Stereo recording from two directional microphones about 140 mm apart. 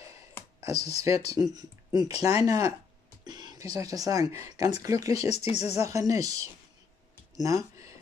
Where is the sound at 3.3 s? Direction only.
30° right (ahead or behind).